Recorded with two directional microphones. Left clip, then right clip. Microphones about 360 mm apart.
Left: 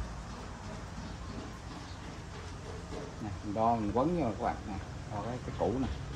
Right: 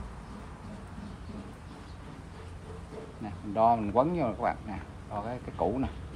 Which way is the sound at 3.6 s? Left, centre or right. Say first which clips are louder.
Right 5 dB; right.